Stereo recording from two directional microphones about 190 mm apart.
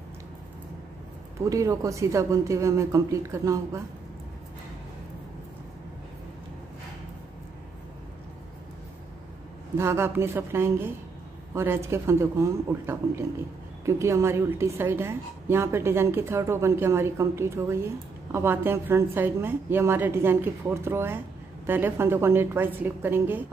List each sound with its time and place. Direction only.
1.4 s a woman's voice: 15° right (ahead or behind)
9.8 s a woman's voice: 15° right (ahead or behind)